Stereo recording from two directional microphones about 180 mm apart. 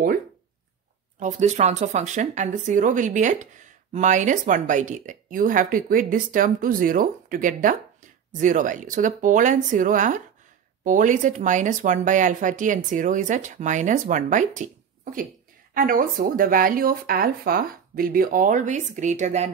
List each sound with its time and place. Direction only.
1.2 s speech: 40° right (ahead or behind)